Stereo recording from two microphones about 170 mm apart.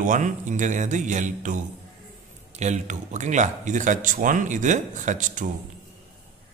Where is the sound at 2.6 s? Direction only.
45° right (ahead or behind).